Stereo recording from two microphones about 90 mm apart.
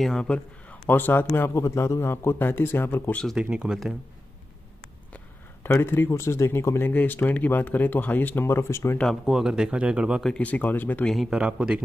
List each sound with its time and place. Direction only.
0.0 s a man's voice: 10° left (ahead or behind)
3.3 s speech: 10° right (ahead or behind)
5.1 s a man's voice: 25° left (ahead or behind)
8.9 s speech: 5° left (ahead or behind)
10.2 s a man's voice: 15° left (ahead or behind)
11.2 s speech: 10° right (ahead or behind)